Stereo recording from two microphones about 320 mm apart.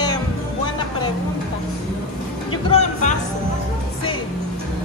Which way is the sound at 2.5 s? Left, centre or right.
Centre.